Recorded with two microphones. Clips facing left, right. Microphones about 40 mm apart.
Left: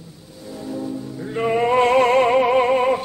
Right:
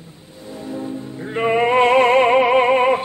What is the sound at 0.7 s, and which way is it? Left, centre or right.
Music, right.